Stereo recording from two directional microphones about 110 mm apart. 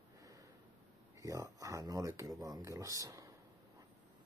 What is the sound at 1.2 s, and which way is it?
Speech, 30° right (ahead or behind).